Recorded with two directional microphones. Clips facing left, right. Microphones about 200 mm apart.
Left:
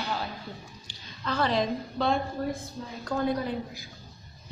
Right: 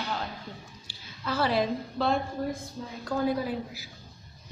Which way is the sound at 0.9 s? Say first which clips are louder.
Even; 10° right (ahead or behind).